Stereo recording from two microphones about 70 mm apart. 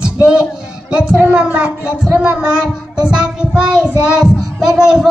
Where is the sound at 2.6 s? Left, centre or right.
Centre.